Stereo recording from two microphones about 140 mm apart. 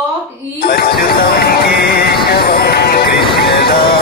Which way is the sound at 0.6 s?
90° left.